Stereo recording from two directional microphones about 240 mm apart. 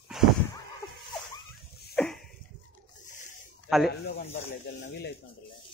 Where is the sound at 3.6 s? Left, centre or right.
Centre.